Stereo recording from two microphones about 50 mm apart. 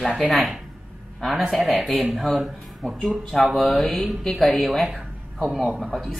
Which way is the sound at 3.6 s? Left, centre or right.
Centre.